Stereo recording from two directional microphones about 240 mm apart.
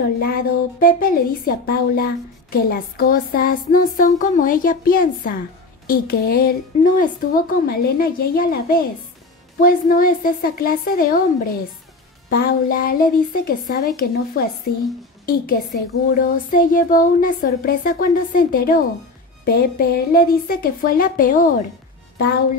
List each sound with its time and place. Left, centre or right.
0.2 s a woman's voice: left